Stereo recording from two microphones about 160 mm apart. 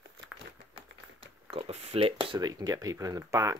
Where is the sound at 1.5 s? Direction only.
40° right (ahead or behind).